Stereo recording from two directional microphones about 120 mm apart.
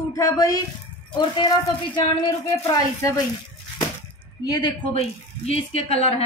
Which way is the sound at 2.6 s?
25° left (ahead or behind).